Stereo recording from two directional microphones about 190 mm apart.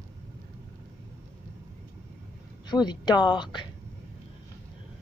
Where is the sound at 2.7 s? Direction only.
20° left (ahead or behind).